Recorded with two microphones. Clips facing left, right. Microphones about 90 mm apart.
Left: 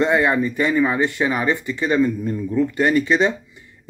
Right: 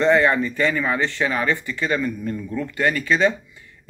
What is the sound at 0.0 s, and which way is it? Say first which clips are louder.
Speech: even; 15° left (ahead or behind).